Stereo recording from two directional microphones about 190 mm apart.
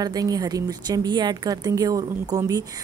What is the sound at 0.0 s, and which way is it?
A woman's voice, 20° right (ahead or behind).